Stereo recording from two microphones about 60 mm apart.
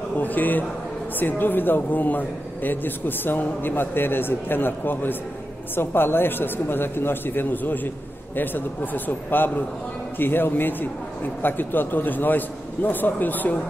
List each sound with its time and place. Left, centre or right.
0.2 s a man's voice: left